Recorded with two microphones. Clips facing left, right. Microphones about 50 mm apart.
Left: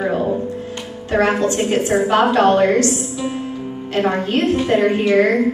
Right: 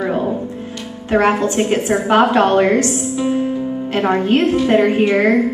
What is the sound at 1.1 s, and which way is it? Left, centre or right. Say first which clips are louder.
A woman's voice: right 2 dB; right.